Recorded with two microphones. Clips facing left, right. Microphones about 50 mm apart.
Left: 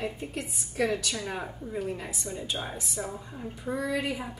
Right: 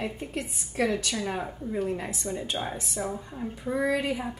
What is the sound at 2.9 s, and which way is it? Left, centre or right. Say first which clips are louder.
Dishes: right 3 dB; centre.